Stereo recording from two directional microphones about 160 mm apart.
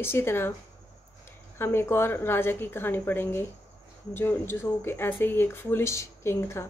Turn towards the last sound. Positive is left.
turn(degrees=15)  # may be behind; listen again after turning